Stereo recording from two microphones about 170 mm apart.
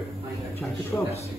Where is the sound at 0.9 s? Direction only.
5° left (ahead or behind).